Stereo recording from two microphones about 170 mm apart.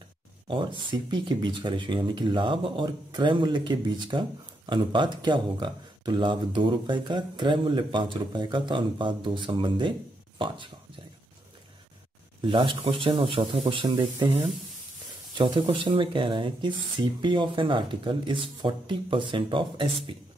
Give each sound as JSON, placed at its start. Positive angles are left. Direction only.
{"t": 0.5, "sound": "speech", "side_deg": -30}
{"t": 12.4, "sound": "speech", "side_deg": -30}